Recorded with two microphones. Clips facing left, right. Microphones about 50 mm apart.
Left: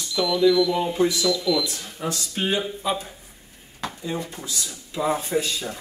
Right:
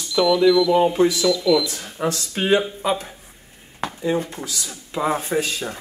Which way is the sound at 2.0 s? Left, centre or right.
Right.